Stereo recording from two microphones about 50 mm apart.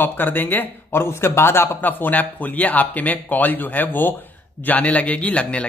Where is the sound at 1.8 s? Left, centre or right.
Left.